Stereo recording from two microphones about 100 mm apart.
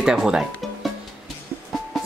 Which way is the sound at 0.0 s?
5° right (ahead or behind).